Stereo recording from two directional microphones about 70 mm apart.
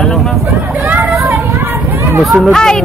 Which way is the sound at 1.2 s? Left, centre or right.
Right.